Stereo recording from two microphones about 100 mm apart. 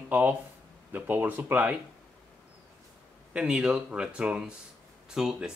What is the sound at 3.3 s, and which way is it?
Speech, 5° right (ahead or behind).